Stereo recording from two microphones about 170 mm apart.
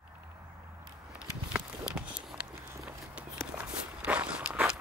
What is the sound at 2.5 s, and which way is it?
Walk, 15° right (ahead or behind).